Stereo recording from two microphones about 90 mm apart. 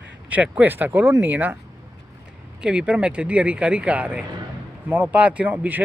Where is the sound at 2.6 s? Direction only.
10° right (ahead or behind).